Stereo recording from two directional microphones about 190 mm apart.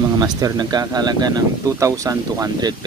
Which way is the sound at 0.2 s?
20° right (ahead or behind).